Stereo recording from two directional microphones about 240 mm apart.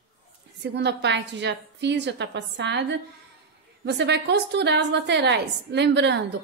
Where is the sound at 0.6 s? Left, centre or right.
Right.